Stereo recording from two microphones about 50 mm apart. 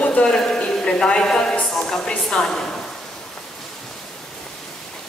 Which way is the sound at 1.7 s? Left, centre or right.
Centre.